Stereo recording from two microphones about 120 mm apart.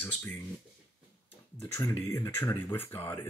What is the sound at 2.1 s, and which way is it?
Speech, 20° left (ahead or behind).